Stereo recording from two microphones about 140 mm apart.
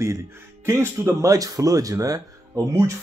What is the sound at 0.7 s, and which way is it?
Speech, 20° right (ahead or behind).